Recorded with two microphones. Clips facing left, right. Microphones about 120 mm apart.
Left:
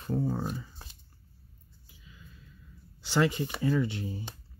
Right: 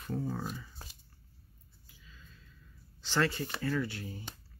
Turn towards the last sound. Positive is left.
turn(degrees=20)  # may be behind; listen again after turning